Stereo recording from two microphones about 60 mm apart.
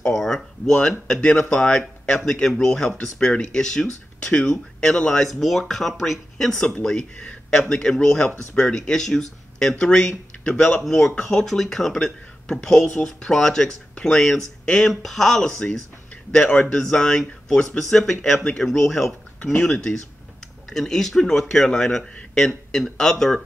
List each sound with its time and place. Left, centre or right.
0.1 s a sound: centre
1.0 s speech: centre
5.2 s speech: centre
10.4 s speech: centre
10.9 s speech: centre